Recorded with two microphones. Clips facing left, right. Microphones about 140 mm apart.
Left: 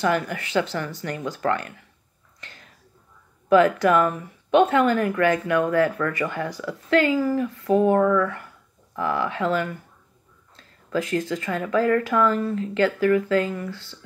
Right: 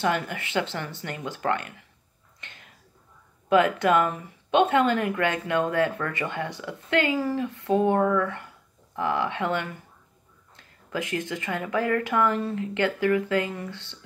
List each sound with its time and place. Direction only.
0.0 s speech: 25° right (ahead or behind)
3.4 s speech: 25° right (ahead or behind)
10.5 s a sound: 20° right (ahead or behind)
11.2 s speech: 20° right (ahead or behind)